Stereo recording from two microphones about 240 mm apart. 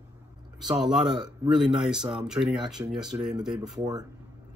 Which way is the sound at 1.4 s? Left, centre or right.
Centre.